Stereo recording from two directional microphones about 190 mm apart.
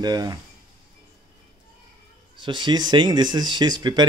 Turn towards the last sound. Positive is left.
turn(degrees=-20)  # may be behind; listen again after turning